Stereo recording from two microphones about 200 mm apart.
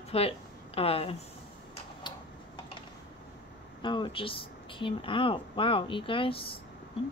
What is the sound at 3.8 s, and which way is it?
Speech, 25° left (ahead or behind).